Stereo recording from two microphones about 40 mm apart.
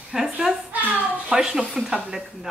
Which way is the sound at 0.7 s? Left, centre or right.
Right.